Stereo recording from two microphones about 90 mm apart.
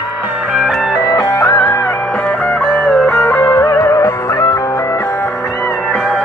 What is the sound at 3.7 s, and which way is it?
Music, 40° left (ahead or behind).